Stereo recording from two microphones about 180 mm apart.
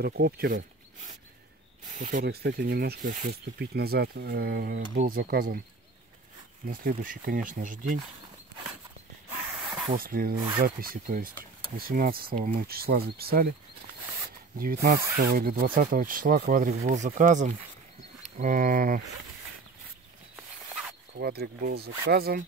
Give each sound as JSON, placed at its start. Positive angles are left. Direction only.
{"t": 0.0, "sound": "speech", "side_deg": -60}
{"t": 2.0, "sound": "speech", "side_deg": -45}
{"t": 2.2, "sound": "speech", "side_deg": -65}
{"t": 6.7, "sound": "speech", "side_deg": -50}
{"t": 9.9, "sound": "speech", "side_deg": -55}
{"t": 10.3, "sound": "speech", "side_deg": -25}
{"t": 10.6, "sound": "speech", "side_deg": -55}
{"t": 14.6, "sound": "speech", "side_deg": -55}
{"t": 21.2, "sound": "speech", "side_deg": -60}